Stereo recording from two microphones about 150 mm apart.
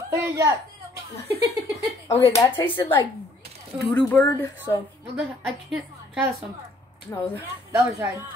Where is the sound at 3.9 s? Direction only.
10° left (ahead or behind).